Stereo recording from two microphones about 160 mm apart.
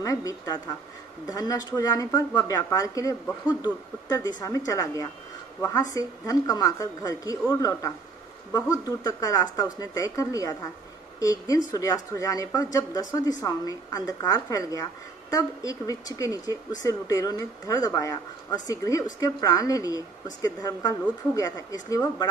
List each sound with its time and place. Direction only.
0.0 s speech: 20° left (ahead or behind)